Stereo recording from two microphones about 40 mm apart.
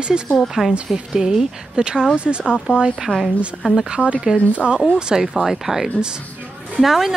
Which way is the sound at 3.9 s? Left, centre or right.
Right.